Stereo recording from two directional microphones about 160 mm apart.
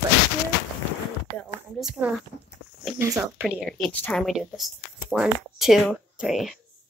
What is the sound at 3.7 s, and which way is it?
Speech, 5° left (ahead or behind).